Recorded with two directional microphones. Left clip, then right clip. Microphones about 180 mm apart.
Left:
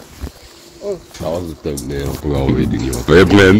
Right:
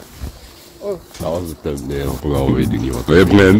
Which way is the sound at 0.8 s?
Centre (ahead or behind).